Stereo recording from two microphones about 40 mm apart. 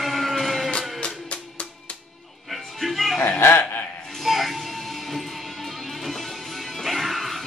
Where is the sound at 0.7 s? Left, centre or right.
Left.